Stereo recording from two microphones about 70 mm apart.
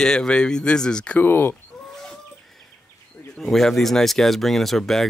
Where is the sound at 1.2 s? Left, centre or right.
Left.